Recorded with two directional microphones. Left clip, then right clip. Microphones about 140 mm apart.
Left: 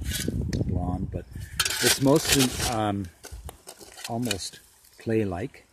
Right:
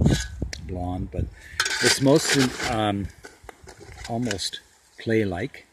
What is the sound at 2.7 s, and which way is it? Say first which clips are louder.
Speech: right 3 dB; 5° right (ahead or behind).